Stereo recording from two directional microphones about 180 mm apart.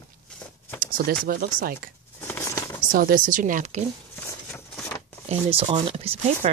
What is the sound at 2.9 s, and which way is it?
Speech, 55° right (ahead or behind).